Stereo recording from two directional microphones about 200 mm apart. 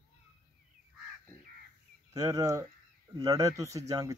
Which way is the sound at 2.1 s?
15° right (ahead or behind).